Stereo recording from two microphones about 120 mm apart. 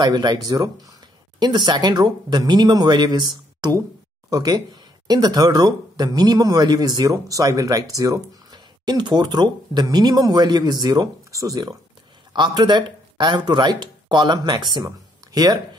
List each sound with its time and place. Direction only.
0.0 s speech: 35° right (ahead or behind)